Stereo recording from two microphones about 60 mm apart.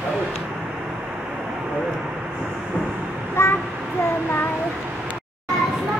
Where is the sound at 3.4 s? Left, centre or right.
Left.